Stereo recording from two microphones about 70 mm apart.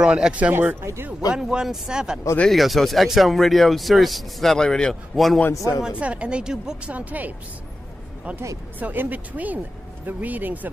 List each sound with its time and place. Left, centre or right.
0.0 s speech: centre
0.7 s speech: right
1.3 s speech: centre
2.5 s speech: centre
5.8 s speech: centre
6.9 s speech: right
8.7 s speech: right